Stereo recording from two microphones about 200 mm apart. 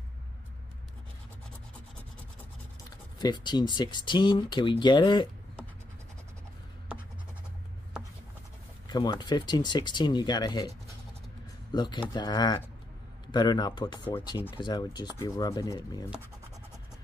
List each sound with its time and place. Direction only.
3.2 s speech: 20° left (ahead or behind)
8.8 s speech: 20° left (ahead or behind)
11.7 s speech: 20° left (ahead or behind)